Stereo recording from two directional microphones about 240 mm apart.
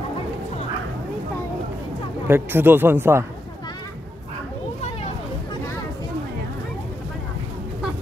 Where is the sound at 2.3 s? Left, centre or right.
Centre.